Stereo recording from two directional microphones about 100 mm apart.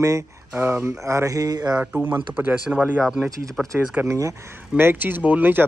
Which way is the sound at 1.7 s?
15° right (ahead or behind).